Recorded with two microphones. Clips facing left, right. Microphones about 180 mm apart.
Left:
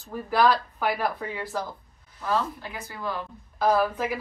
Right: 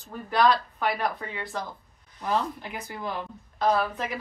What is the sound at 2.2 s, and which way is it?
Speech, 20° right (ahead or behind).